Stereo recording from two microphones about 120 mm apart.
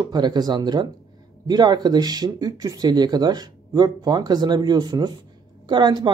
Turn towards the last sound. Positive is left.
turn(degrees=-40)  # may be behind; listen again after turning